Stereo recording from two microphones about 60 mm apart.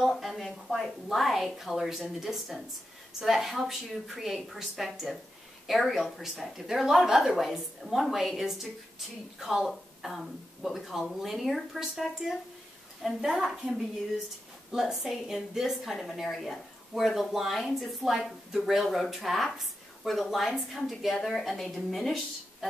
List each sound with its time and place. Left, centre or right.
0.0 s a woman's voice: centre
13.0 s a woman's voice: centre